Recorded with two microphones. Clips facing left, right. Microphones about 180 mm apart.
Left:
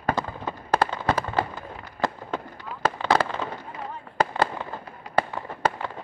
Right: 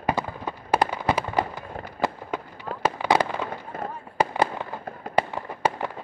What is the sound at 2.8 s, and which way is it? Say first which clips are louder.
Fireworks: right 1 dB; 15° right (ahead or behind).